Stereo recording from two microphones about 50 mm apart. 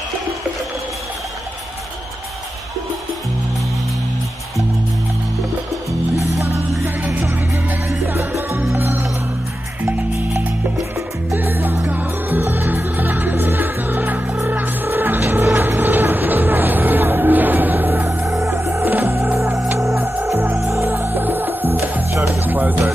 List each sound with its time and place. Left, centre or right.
8.7 s music: right
11.3 s music: right
18.4 s music: right
21.0 s music: right
22.1 s music: right
22.4 s music: right